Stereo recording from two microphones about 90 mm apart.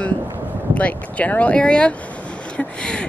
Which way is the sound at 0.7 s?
15° left (ahead or behind).